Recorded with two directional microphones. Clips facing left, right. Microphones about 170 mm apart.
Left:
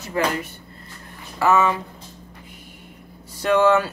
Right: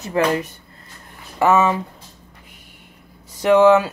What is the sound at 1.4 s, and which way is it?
Speech, 25° right (ahead or behind).